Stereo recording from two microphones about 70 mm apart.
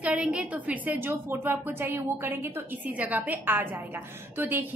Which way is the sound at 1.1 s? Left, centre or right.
Right.